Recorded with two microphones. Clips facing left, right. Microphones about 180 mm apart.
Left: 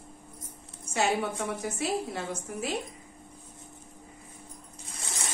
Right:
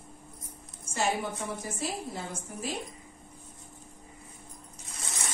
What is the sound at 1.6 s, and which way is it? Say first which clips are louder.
A woman's voice: left 5 dB; 70° left (ahead or behind).